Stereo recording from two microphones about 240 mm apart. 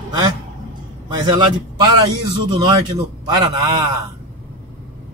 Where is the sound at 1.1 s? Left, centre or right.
Centre.